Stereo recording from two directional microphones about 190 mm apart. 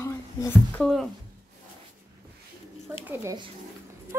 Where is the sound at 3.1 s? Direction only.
15° right (ahead or behind).